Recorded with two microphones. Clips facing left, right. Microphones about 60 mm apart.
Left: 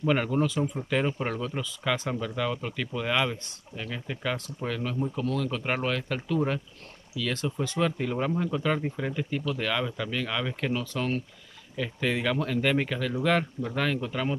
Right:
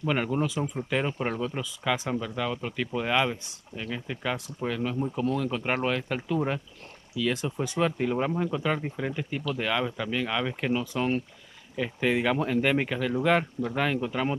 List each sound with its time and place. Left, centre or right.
0.0 s speech: centre